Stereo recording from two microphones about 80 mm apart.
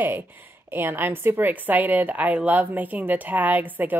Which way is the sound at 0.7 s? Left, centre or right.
Right.